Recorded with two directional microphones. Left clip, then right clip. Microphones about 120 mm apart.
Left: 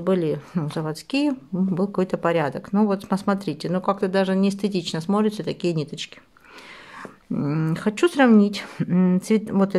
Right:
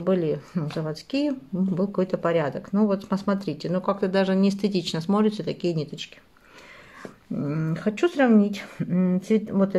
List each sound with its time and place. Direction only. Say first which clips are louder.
0.0 s speech: left 1 dB; 25° left (ahead or behind)